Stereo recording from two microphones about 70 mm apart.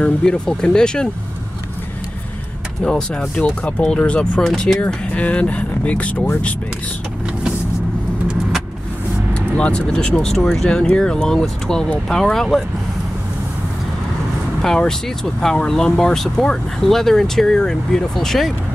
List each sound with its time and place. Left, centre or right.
0.0 s speech: centre
2.8 s speech: centre
9.3 s speech: centre
14.6 s speech: centre